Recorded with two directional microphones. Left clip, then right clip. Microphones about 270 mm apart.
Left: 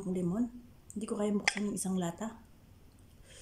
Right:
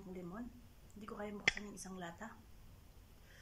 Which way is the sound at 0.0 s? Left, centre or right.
Left.